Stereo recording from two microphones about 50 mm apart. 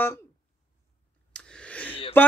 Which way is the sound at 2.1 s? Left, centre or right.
Left.